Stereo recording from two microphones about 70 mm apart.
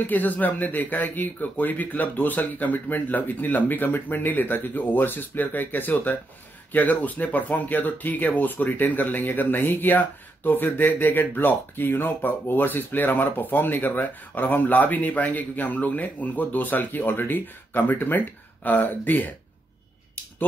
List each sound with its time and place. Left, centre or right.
0.0 s speech: left